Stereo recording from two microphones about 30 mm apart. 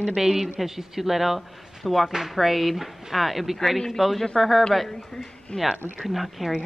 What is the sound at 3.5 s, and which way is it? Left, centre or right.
A man's voice, centre.